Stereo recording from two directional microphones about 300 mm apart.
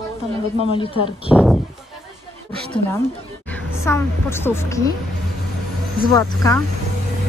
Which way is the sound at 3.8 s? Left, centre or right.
Centre.